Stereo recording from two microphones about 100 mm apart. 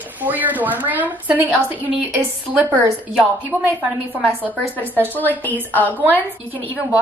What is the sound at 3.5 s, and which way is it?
Speech, 15° left (ahead or behind).